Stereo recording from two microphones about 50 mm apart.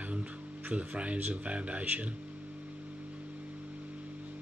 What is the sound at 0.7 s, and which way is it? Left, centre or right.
Speech, right.